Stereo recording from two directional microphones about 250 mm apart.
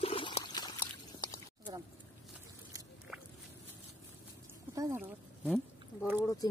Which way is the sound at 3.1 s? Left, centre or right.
Centre.